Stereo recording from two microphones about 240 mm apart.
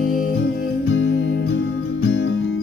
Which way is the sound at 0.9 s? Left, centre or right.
Left.